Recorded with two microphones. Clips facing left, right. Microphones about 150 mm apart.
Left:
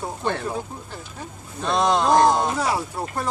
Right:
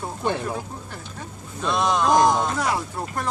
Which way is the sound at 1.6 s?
30° left (ahead or behind).